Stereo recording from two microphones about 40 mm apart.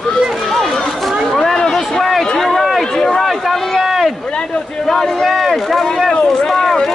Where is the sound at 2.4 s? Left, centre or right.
Centre.